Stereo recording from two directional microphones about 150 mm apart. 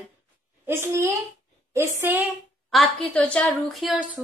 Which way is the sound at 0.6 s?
15° right (ahead or behind).